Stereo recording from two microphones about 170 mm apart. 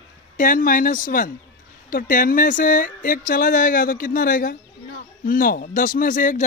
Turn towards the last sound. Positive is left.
turn(degrees=50)  # may be behind; listen again after turning